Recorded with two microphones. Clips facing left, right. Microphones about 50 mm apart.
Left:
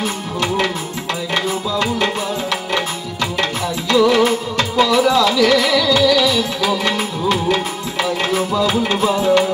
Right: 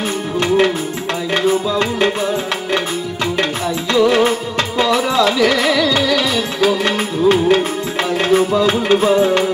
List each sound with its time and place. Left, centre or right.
1.3 s music: right
3.9 s music: right